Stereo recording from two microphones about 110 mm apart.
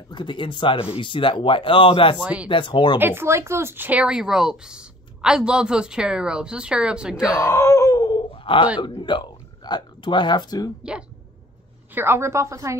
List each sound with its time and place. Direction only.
0.1 s speech: 45° left (ahead or behind)
3.0 s speech: 20° right (ahead or behind)
7.3 s groan: 25° left (ahead or behind)
8.5 s speech: 55° left (ahead or behind)
10.8 s speech: 10° right (ahead or behind)
11.9 s a woman's voice: 20° right (ahead or behind)